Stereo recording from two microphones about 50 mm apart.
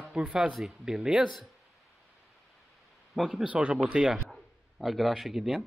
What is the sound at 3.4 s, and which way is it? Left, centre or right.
Speech, right.